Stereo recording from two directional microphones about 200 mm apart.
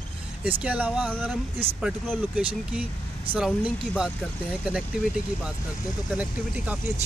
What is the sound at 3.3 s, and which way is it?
Speech, 5° right (ahead or behind).